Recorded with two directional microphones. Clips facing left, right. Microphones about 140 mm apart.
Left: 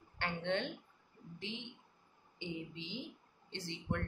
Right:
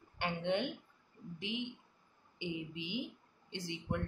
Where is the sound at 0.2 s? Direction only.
15° right (ahead or behind).